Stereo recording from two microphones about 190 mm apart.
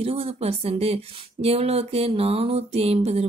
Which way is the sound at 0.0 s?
30° right (ahead or behind).